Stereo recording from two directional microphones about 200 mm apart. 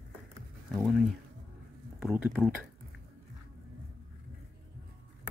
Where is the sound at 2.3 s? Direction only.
Centre (ahead or behind).